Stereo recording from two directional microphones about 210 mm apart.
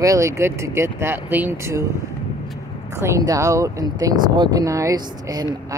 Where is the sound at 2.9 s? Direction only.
15° right (ahead or behind).